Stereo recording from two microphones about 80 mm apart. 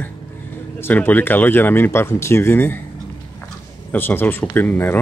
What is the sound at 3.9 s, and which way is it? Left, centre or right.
Speech, left.